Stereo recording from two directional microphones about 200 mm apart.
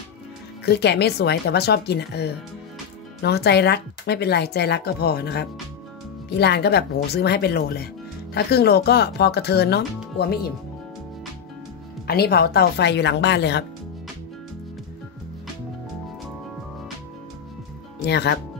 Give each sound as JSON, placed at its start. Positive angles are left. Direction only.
{"t": 0.7, "sound": "speech", "side_deg": 55}
{"t": 12.1, "sound": "speech", "side_deg": 50}
{"t": 18.0, "sound": "speech", "side_deg": 55}